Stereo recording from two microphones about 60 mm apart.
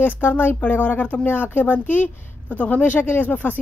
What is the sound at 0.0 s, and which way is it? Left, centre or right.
Speech, left.